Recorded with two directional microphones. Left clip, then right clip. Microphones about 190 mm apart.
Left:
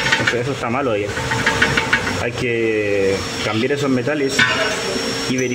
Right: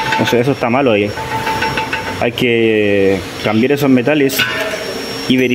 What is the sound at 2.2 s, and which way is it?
Speech, 40° right (ahead or behind).